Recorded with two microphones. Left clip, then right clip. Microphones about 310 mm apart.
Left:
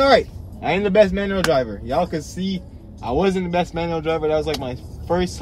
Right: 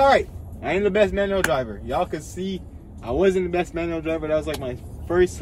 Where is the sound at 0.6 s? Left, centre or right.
Centre.